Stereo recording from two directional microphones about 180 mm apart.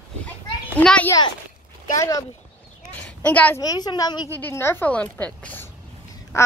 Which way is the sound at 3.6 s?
20° left (ahead or behind).